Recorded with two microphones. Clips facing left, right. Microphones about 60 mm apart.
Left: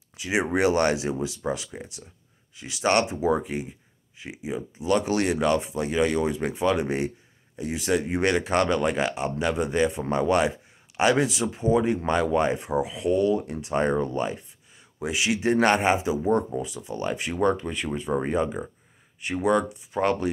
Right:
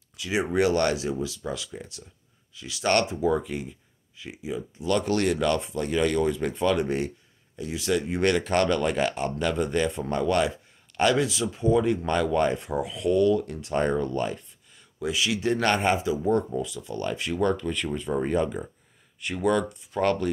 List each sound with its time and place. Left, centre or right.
0.2 s speech: left
15.0 s speech: left